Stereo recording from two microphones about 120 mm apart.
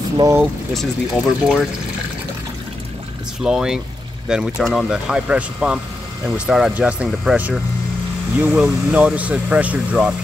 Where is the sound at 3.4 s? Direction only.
5° right (ahead or behind).